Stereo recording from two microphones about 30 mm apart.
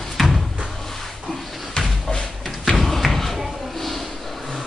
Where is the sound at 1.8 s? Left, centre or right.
Left.